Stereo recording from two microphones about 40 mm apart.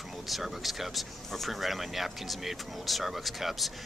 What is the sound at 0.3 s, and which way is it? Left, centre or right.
Speech, centre.